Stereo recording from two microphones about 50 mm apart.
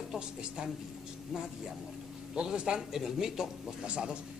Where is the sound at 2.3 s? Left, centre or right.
Centre.